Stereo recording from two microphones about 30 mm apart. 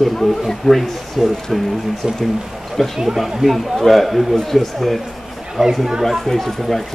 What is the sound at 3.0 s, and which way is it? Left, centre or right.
A man's voice, centre.